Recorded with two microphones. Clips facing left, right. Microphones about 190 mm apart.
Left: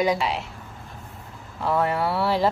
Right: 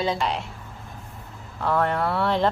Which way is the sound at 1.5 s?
5° left (ahead or behind).